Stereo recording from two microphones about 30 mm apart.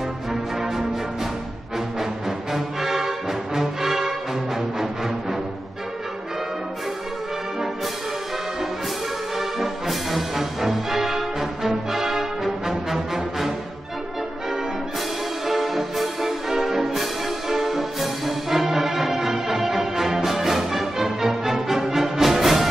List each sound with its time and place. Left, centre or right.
0.3 s music: centre
2.0 s music: centre
9.4 s music: centre
15.4 s music: centre